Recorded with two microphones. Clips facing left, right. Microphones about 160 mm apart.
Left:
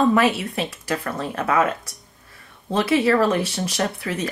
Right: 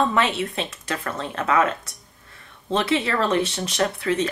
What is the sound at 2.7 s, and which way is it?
Speech, 25° right (ahead or behind).